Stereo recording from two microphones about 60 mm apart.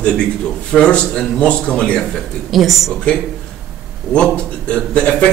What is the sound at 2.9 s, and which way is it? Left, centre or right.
A man's voice, centre.